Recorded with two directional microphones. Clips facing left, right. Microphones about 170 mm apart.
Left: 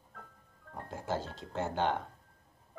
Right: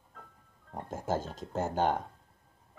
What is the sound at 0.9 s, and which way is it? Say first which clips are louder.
Speech: right 3 dB; 45° right (ahead or behind).